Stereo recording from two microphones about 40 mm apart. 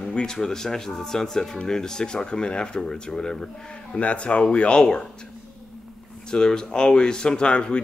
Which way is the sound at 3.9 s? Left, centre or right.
Left.